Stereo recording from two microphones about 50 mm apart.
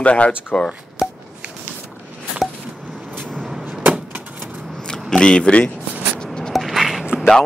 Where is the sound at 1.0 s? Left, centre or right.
Centre.